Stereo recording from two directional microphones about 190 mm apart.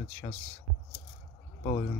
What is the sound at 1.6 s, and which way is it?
Speech, 25° left (ahead or behind).